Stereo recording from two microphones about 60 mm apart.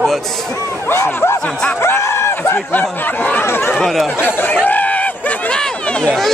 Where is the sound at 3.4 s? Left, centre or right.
Left.